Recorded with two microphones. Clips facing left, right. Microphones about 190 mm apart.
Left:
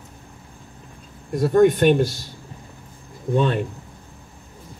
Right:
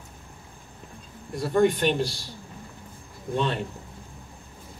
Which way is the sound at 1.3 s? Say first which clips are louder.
Left 6 dB; 45° left (ahead or behind).